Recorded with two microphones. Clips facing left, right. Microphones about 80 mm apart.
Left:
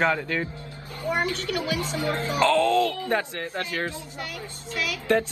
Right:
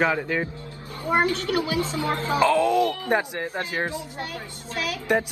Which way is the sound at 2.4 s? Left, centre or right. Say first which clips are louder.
Even; centre.